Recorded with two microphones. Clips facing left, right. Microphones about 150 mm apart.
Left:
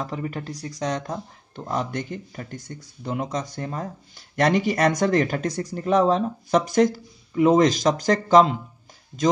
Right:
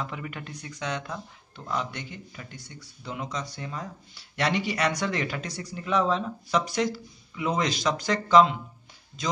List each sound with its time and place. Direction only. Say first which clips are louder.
0.0 s speech: left 6 dB; 35° left (ahead or behind)